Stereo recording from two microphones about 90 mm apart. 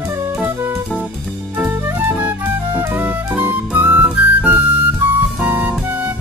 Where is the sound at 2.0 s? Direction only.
20° right (ahead or behind).